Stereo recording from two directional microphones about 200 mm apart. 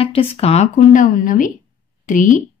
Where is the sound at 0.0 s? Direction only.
30° left (ahead or behind).